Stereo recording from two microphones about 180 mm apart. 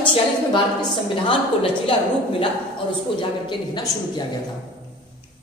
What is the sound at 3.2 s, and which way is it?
Speech, 25° left (ahead or behind).